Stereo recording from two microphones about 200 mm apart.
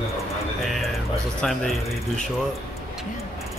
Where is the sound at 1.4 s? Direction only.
Centre (ahead or behind).